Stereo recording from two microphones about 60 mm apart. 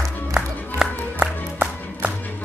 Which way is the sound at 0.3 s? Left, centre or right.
Centre.